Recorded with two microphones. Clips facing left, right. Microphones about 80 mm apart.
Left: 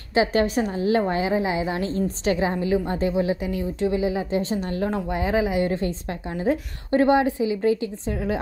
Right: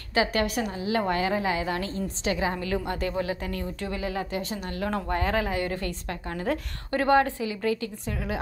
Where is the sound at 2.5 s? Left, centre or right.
Centre.